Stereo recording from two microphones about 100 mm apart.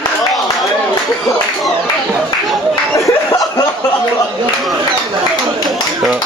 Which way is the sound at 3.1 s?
30° left (ahead or behind).